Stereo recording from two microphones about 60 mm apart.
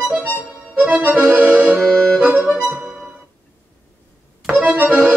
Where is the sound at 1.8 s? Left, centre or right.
Centre.